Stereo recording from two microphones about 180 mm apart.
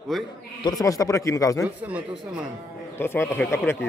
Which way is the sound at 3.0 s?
15° left (ahead or behind).